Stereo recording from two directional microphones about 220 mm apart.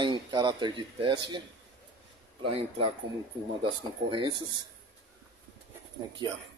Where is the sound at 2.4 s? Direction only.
25° right (ahead or behind).